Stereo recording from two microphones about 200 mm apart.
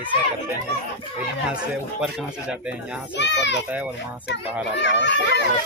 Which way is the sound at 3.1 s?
60° left (ahead or behind).